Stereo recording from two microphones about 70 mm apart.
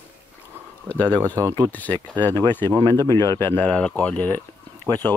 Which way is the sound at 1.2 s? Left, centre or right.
Right.